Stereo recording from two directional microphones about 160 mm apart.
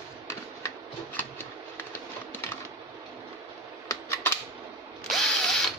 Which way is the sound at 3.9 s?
15° left (ahead or behind).